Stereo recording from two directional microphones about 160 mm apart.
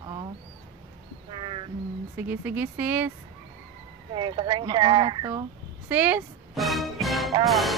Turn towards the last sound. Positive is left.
turn(degrees=0)  # may be behind; listen again after turning